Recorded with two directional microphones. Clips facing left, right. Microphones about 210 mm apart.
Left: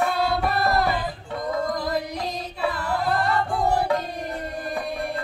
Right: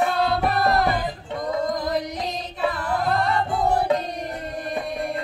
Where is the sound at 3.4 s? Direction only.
20° right (ahead or behind).